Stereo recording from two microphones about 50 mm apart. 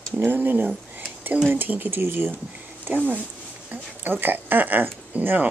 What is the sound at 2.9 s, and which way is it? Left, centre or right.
Speech, right.